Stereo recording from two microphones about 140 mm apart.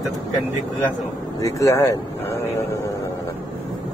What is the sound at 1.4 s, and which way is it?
Speech, 20° left (ahead or behind).